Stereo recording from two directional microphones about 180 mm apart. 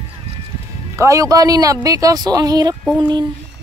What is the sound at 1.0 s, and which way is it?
Speech, 20° right (ahead or behind).